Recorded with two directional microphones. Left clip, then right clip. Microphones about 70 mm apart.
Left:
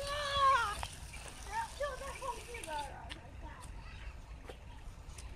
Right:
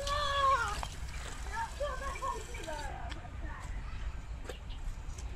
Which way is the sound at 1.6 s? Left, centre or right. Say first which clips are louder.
Right 2 dB; right.